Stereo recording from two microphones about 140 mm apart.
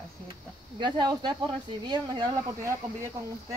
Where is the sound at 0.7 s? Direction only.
35° right (ahead or behind).